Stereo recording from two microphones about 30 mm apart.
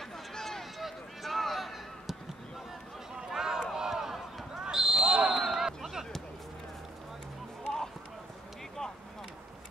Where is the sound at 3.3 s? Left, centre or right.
Centre.